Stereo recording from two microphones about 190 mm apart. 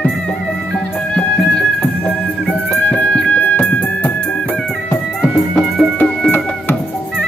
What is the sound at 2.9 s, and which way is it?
Music, 5° left (ahead or behind).